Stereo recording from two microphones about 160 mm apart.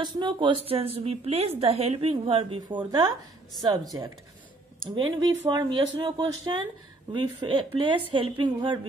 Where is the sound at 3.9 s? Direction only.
25° right (ahead or behind).